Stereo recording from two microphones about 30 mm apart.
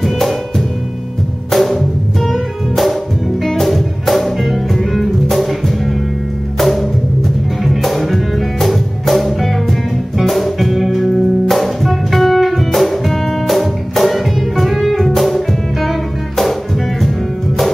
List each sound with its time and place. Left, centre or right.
0.0 s music: centre
1.5 s music: centre
6.6 s music: centre